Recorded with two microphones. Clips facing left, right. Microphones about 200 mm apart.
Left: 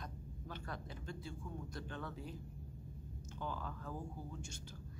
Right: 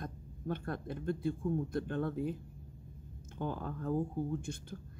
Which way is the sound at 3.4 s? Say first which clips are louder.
Right 8 dB; 55° right (ahead or behind).